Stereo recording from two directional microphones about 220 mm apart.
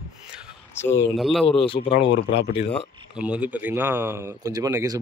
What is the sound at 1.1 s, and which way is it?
Speech, centre (ahead or behind).